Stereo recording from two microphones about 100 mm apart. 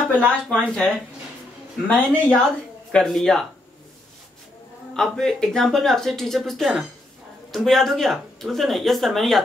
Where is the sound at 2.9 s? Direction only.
5° left (ahead or behind).